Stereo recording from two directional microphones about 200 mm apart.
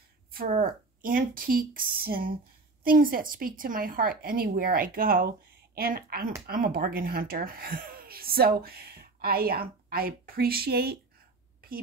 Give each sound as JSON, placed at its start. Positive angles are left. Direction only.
{"t": 0.3, "sound": "speech", "side_deg": -45}